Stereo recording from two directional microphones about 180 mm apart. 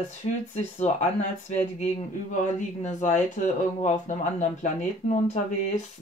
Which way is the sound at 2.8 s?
40° left (ahead or behind).